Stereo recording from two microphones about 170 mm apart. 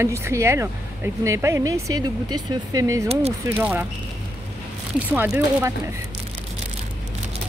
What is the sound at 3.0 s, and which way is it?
Speech, 40° right (ahead or behind).